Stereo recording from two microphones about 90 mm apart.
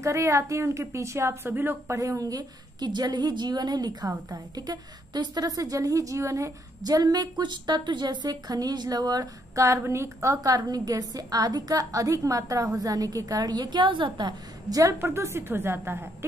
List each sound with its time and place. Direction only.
0.0 s a woman's voice: 35° right (ahead or behind)
2.0 s a woman's voice: 40° right (ahead or behind)
9.7 s a woman's voice: 30° right (ahead or behind); by 14.8 s 55° right (ahead or behind)
15.0 s a woman's voice: 25° right (ahead or behind)